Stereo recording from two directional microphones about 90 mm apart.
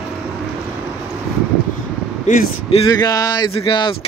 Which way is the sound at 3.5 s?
70° left (ahead or behind).